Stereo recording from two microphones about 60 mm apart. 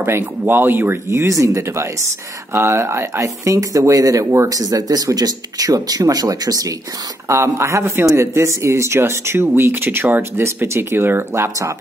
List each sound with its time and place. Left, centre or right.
0.0 s speech: right
1.2 s speech: right
3.4 s speech: right
7.2 s speech: right
10.4 s speech: right